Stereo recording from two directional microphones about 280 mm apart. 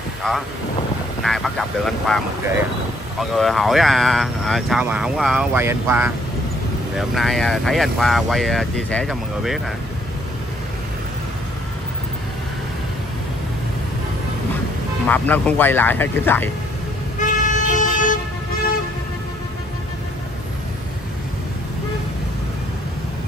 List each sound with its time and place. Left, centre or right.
0.2 s speech: centre
15.0 s speech: centre
17.2 s vehicle: left